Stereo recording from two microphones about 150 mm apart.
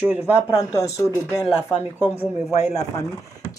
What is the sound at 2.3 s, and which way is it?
Speech, 45° left (ahead or behind).